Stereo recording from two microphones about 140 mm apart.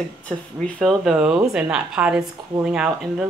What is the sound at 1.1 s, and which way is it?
Speech, 5° right (ahead or behind).